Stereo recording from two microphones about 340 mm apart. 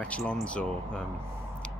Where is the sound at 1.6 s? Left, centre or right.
Centre.